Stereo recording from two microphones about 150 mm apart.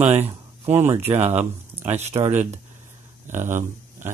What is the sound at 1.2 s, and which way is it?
Speech, 50° right (ahead or behind).